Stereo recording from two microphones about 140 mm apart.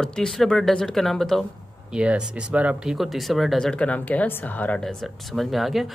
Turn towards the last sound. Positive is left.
turn(degrees=0)  # may be behind; listen again after turning